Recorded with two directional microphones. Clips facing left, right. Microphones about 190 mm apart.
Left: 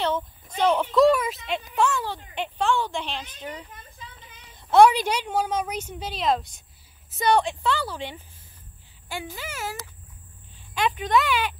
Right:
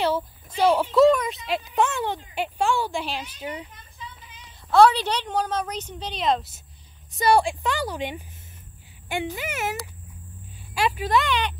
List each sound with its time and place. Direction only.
0.6 s speech: 5° right (ahead or behind)
1.8 s speech: 20° right (ahead or behind)
2.3 s a woman's voice: 10° right (ahead or behind)
4.6 s a woman's voice: 15° left (ahead or behind); by 8.2 s 15° right (ahead or behind)
9.3 s speech: 20° right (ahead or behind)
10.7 s speech: 5° right (ahead or behind)